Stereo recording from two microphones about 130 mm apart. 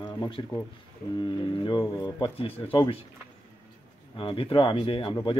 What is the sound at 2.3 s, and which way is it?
Speech, 45° left (ahead or behind).